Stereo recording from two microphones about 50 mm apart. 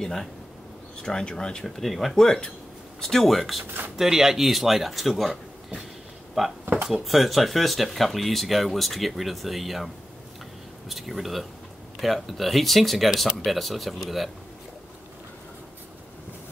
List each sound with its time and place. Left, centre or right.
0.0 s speech: centre
1.8 s speech: centre
6.4 s speech: centre
10.9 s speech: centre